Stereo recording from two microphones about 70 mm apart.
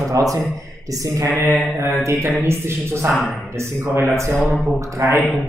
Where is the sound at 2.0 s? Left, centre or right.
Right.